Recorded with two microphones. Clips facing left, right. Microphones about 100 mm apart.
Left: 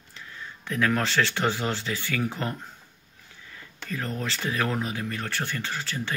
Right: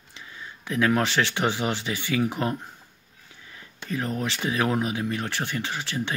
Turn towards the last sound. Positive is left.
turn(degrees=-20)  # may be behind; listen again after turning